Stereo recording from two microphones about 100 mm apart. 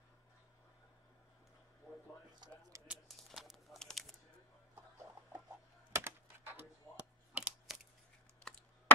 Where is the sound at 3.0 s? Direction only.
Centre (ahead or behind).